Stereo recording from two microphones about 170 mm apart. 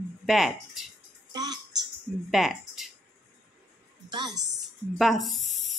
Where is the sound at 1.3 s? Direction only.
25° right (ahead or behind).